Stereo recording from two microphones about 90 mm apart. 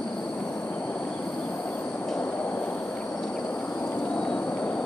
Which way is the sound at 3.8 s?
15° left (ahead or behind).